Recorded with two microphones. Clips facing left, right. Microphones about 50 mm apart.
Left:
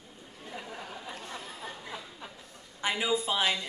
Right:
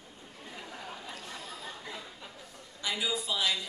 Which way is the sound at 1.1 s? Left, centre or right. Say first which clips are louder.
Left 2 dB; left.